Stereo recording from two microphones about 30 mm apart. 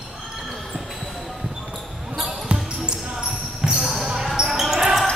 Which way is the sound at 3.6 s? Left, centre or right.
Right.